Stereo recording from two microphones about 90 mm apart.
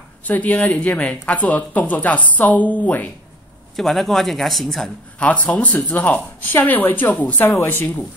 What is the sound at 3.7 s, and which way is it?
Speech, 5° left (ahead or behind).